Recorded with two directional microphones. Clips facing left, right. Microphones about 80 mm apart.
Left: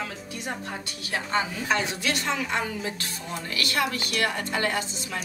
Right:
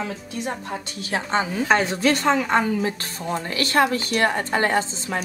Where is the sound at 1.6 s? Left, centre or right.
Right.